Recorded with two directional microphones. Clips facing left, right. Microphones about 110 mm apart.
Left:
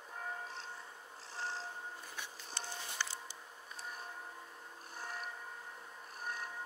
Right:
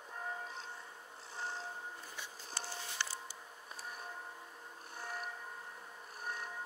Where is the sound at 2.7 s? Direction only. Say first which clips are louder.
Left 1 dB; 20° left (ahead or behind).